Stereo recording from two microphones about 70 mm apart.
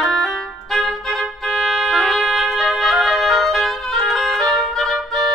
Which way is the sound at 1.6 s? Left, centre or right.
Centre.